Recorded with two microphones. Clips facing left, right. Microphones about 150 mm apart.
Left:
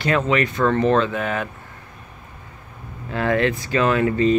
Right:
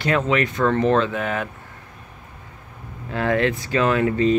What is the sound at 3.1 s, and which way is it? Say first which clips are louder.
Speech: left 1 dB; 10° right (ahead or behind).